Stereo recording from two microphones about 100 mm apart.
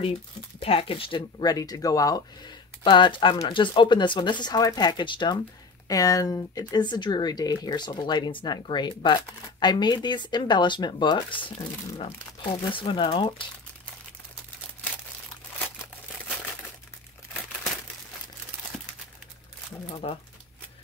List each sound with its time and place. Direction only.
0.6 s speech: 70° left (ahead or behind)
1.4 s speech: 40° left (ahead or behind)
2.8 s speech: 55° left (ahead or behind)
5.9 s speech: 35° left (ahead or behind); by 13.3 s 55° left (ahead or behind)
19.9 s speech: 85° left